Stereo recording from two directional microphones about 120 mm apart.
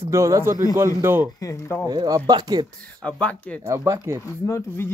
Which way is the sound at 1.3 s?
25° left (ahead or behind).